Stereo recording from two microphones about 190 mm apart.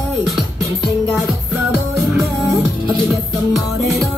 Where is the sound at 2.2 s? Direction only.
15° right (ahead or behind).